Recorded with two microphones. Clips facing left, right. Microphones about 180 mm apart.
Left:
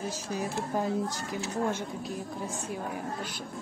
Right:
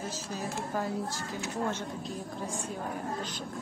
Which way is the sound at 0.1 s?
15° left (ahead or behind).